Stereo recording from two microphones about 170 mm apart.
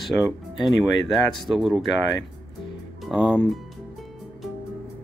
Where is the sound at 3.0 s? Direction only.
5° right (ahead or behind).